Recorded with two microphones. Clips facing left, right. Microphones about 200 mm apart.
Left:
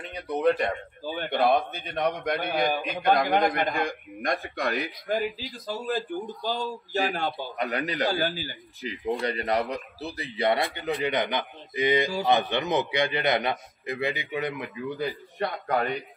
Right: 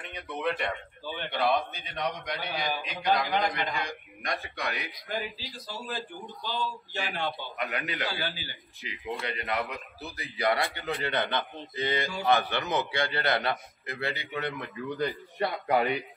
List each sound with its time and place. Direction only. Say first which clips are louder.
0.0 s a man's voice: left 8 dB; 35° left (ahead or behind)
6.5 s a man's voice: left 4 dB; 40° left (ahead or behind); by 14.6 s 15° left (ahead or behind)
15.0 s speech: right 1 dB; centre (ahead or behind)